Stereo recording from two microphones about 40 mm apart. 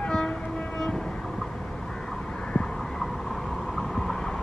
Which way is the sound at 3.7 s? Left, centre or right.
Centre.